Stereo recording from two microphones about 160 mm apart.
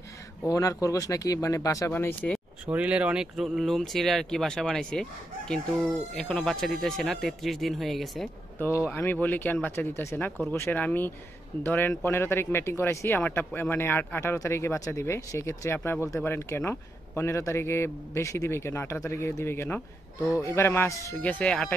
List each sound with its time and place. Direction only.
0.5 s speech: 20° left (ahead or behind)
2.6 s speech: 10° right (ahead or behind)
8.5 s a man's voice: 15° left (ahead or behind)